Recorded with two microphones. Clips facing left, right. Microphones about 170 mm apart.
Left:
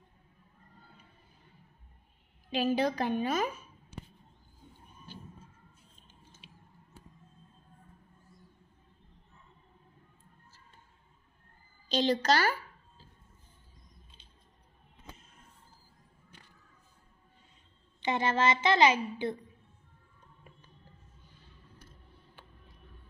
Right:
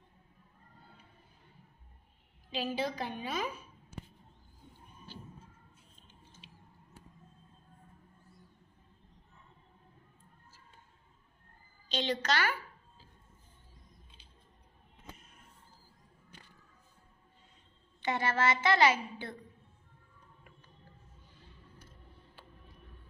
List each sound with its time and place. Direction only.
2.5 s a woman's voice: 50° left (ahead or behind)
6.4 s a sound: 50° left (ahead or behind)
11.9 s a woman's voice: 40° left (ahead or behind)
18.0 s a child's voice: 20° left (ahead or behind)